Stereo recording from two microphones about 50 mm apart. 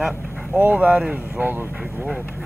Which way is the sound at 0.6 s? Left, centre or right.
Right.